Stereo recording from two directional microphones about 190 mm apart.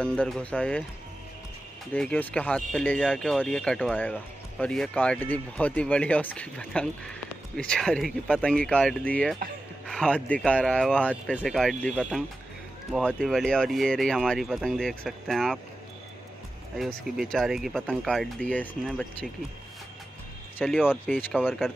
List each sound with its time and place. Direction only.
0.0 s speech: 5° left (ahead or behind)
2.0 s speech: 5° left (ahead or behind)
16.7 s speech: centre (ahead or behind)
20.5 s speech: 5° left (ahead or behind)